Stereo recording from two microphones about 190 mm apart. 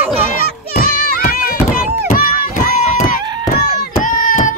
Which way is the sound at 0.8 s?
50° left (ahead or behind).